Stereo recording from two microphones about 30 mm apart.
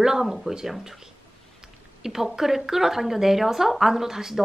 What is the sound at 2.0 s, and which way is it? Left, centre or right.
A woman's voice, centre.